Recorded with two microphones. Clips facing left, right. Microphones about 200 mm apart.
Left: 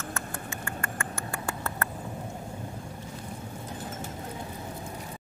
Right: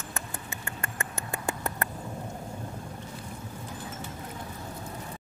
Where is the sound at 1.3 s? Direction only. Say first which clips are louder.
Right 4 dB; 20° right (ahead or behind).